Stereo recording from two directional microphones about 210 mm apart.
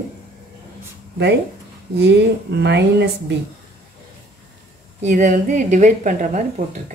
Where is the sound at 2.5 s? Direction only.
55° right (ahead or behind).